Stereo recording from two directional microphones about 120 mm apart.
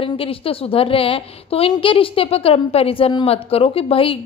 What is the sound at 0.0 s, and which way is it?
A woman's voice, 50° left (ahead or behind).